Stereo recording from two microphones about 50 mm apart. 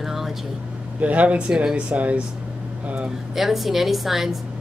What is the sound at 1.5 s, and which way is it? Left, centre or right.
Speech, centre.